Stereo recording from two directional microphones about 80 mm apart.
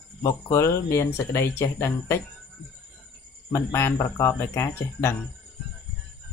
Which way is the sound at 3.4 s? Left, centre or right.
Left.